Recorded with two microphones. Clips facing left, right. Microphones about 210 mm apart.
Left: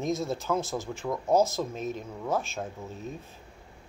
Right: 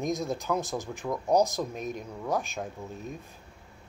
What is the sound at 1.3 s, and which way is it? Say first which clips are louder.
Speech: even; 15° right (ahead or behind).